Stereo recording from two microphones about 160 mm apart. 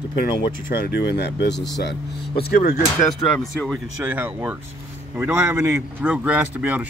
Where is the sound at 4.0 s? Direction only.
10° right (ahead or behind).